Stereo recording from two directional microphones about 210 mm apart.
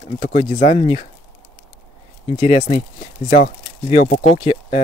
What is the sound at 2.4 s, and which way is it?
Speech, 30° left (ahead or behind).